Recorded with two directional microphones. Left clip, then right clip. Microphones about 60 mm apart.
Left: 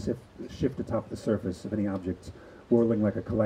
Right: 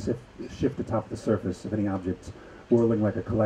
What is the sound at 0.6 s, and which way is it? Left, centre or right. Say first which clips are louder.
Speech: right 2 dB; left.